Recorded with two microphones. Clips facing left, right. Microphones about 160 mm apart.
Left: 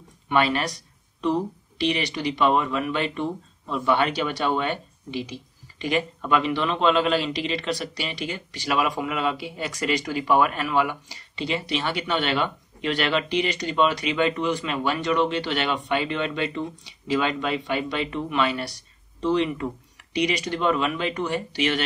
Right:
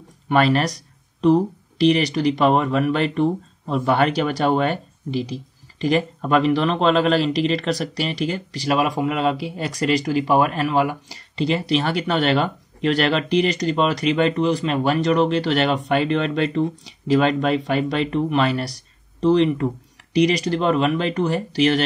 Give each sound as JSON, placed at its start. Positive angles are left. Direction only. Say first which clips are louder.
{"t": 0.3, "sound": "speech", "louder": "right 5 dB", "side_deg": -40}